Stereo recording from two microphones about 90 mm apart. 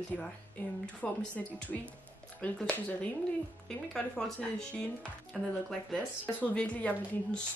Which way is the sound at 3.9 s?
10° left (ahead or behind).